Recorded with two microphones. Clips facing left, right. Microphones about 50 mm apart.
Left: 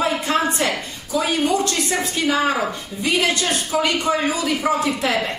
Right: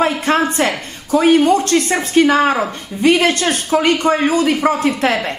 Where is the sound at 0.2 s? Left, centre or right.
Right.